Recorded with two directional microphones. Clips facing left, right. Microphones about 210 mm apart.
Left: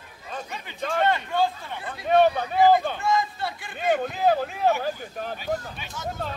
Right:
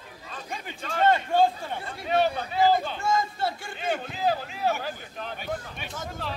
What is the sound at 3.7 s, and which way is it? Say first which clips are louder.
Speech: left 10 dB; 50° left (ahead or behind).